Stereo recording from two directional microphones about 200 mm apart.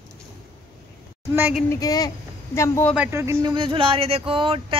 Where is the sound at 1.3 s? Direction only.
10° right (ahead or behind).